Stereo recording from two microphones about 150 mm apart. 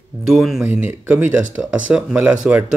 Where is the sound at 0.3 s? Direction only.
Centre (ahead or behind).